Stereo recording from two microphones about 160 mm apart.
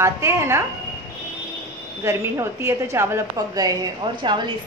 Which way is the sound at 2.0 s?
15° right (ahead or behind).